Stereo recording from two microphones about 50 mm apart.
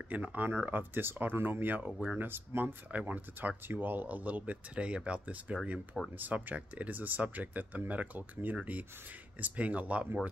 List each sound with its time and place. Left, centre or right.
0.1 s speech: right
2.9 s speech: right
6.1 s speech: right